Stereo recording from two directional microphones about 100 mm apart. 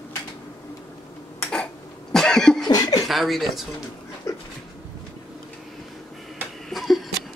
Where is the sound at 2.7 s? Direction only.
40° left (ahead or behind).